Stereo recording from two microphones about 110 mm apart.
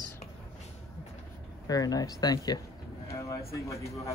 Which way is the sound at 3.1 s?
30° left (ahead or behind).